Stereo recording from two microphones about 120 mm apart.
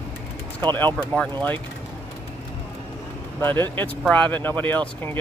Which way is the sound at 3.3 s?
15° left (ahead or behind).